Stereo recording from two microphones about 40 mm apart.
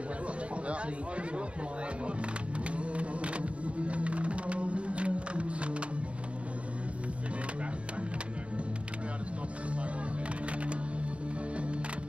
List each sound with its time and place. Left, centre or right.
0.7 s a sound: right
2.7 s music: right
11.5 s music: right